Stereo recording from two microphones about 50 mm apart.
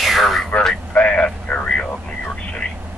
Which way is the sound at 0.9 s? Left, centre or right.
Left.